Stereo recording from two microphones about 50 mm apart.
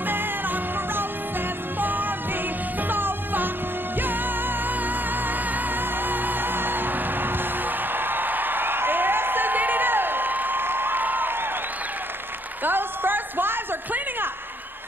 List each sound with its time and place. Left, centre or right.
0.0 s music: right
5.5 s music: right
12.6 s a sound: right